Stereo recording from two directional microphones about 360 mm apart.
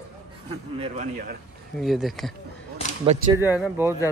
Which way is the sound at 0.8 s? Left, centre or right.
Right.